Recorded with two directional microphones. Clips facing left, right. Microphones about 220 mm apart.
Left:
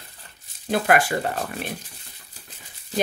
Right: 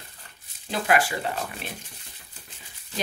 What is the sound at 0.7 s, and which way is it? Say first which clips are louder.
Speech: left 4 dB; 55° left (ahead or behind).